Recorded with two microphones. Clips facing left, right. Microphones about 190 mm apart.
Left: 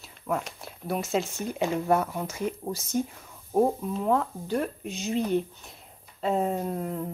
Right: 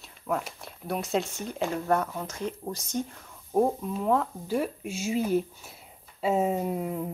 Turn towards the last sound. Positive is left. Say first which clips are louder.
# right 1 dB
turn(degrees=-5)  # may be behind; listen again after turning